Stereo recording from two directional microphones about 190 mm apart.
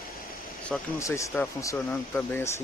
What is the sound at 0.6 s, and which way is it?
Speech, 15° left (ahead or behind).